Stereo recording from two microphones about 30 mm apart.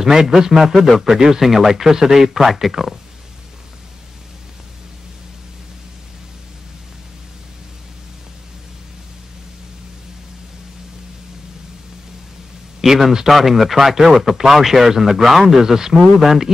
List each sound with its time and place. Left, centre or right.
0.0 s a man's voice: centre
2.3 s speech: centre
12.8 s a man's voice: centre
13.3 s a man's voice: centre